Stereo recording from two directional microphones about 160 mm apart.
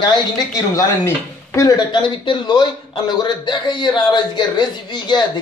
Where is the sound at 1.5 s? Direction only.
25° left (ahead or behind).